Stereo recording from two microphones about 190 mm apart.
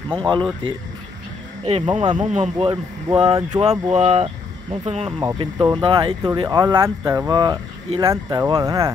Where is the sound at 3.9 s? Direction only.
30° right (ahead or behind).